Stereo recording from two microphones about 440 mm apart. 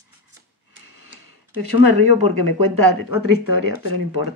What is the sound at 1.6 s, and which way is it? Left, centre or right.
A woman's voice, right.